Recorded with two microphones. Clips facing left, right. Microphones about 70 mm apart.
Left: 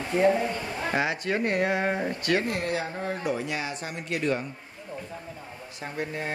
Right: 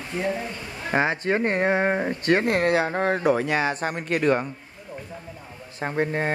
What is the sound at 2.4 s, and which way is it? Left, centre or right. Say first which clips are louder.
Speech: right 8 dB; right.